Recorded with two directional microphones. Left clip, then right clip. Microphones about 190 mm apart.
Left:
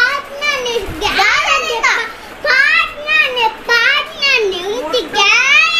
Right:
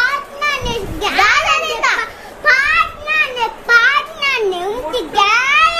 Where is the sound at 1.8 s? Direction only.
40° right (ahead or behind).